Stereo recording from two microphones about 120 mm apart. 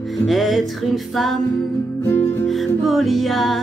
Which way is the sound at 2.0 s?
20° left (ahead or behind).